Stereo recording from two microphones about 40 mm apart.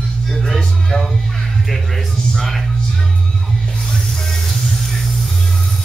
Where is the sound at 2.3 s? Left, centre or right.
Centre.